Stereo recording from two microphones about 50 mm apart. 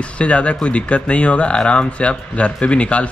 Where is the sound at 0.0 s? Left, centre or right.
Left.